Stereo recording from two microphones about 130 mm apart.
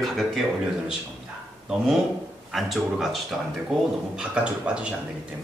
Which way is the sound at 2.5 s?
Centre (ahead or behind).